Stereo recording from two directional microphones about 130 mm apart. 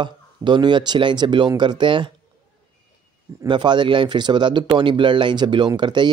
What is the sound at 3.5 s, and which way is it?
Speech, 35° right (ahead or behind).